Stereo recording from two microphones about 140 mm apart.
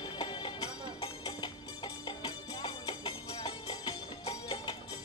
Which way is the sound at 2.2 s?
30° left (ahead or behind).